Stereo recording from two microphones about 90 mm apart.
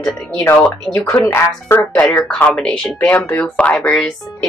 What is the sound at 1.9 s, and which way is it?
Speech, 10° left (ahead or behind).